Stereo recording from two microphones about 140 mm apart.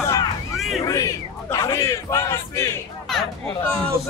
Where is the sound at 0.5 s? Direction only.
Centre (ahead or behind).